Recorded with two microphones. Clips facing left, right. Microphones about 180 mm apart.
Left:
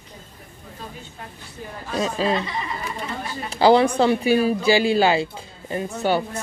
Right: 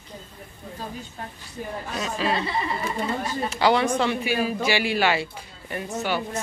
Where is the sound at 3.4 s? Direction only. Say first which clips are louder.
Left 6 dB; 35° left (ahead or behind).